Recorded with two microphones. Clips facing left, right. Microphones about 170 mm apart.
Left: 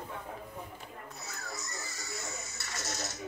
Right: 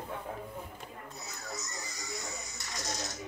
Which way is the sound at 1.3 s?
15° right (ahead or behind).